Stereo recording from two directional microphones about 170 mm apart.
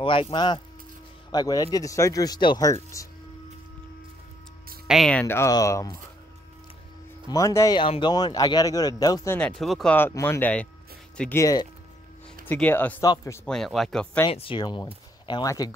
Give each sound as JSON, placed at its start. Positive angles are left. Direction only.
{"t": 0.0, "sound": "speech", "side_deg": 30}
{"t": 4.8, "sound": "speech", "side_deg": 0}
{"t": 5.2, "sound": "speech", "side_deg": 15}
{"t": 7.2, "sound": "speech", "side_deg": 20}
{"t": 9.4, "sound": "speech", "side_deg": 0}
{"t": 9.9, "sound": "speech", "side_deg": 15}
{"t": 12.4, "sound": "speech", "side_deg": 10}
{"t": 13.0, "sound": "speech", "side_deg": 20}
{"t": 13.5, "sound": "speech", "side_deg": 0}
{"t": 14.3, "sound": "speech", "side_deg": 30}